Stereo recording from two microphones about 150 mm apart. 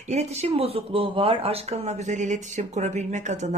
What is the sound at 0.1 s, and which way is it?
Speech, 45° right (ahead or behind).